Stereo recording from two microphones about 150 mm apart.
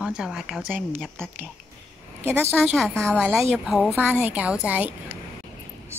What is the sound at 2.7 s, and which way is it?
A woman's voice, 5° left (ahead or behind).